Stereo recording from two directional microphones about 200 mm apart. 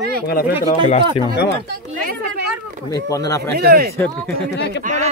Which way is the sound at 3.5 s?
50° right (ahead or behind).